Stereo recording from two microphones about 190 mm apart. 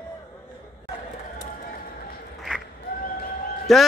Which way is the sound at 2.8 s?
50° left (ahead or behind).